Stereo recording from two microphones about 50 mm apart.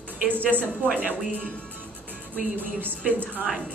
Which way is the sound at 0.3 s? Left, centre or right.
Right.